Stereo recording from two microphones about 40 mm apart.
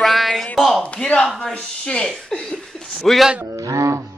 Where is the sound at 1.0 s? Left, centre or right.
Left.